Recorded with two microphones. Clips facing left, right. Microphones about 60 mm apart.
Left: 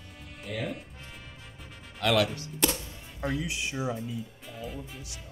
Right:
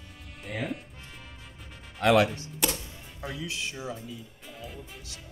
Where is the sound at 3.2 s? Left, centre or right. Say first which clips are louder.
Left 4 dB; left.